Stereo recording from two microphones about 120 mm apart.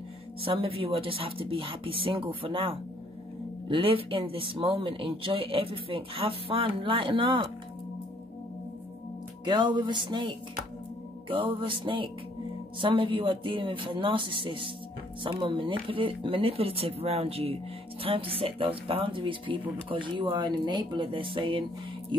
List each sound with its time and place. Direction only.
0.4 s speech: 50° right (ahead or behind)
9.4 s music: 40° right (ahead or behind)
11.2 s speech: 45° right (ahead or behind)